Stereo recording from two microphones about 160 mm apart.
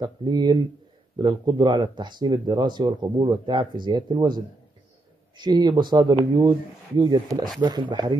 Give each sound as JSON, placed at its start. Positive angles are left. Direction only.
{"t": 0.0, "sound": "speech", "side_deg": -25}
{"t": 5.4, "sound": "speech", "side_deg": -25}